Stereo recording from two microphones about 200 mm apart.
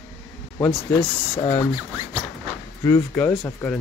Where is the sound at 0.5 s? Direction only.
10° left (ahead or behind).